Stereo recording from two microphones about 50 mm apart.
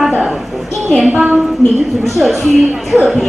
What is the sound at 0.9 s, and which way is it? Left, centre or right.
Speech, right.